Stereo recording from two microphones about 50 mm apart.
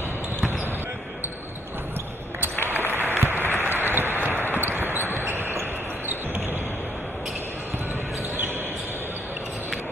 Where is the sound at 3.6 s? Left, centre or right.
Right.